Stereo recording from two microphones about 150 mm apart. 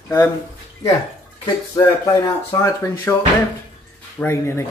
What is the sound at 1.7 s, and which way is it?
Speech, 25° left (ahead or behind).